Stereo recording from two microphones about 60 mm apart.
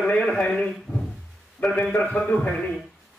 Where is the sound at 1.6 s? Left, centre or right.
Left.